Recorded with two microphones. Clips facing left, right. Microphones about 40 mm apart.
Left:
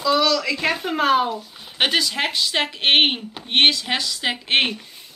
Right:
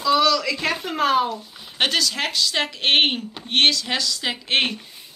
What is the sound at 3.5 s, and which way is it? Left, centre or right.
Speech, left.